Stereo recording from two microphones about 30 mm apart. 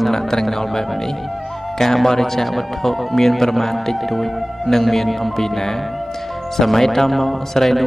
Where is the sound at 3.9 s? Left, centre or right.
Centre.